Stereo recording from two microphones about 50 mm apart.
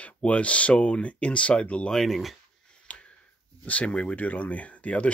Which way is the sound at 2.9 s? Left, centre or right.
Left.